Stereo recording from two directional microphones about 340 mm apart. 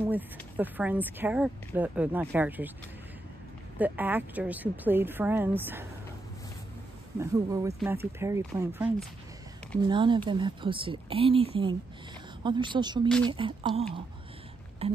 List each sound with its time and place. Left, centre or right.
0.1 s speech: centre
3.7 s speech: centre
7.2 s speech: centre